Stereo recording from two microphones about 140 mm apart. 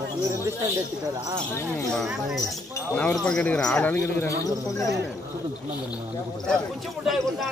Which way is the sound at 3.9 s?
20° left (ahead or behind).